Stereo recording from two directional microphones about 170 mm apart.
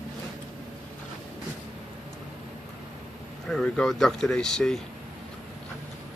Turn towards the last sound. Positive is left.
turn(degrees=5)  # may be behind; listen again after turning